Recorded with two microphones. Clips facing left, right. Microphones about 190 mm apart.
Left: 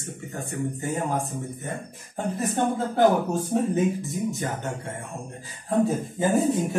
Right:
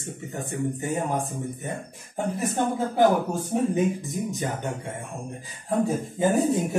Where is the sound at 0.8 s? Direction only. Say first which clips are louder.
Even; 15° right (ahead or behind).